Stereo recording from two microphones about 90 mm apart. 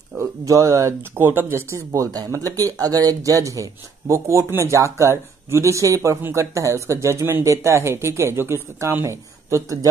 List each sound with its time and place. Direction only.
0.2 s speech: 35° right (ahead or behind)
1.1 s speech: 20° right (ahead or behind)
1.7 s speech: 40° right (ahead or behind)